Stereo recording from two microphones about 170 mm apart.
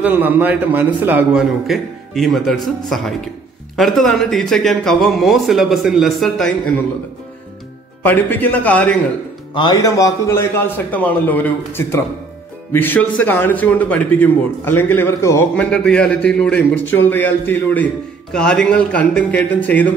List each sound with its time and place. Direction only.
0.0 s a man's voice: 10° right (ahead or behind)
8.0 s a man's voice: 10° left (ahead or behind)
9.5 s a man's voice: 25° left (ahead or behind); by 19.9 s 10° left (ahead or behind)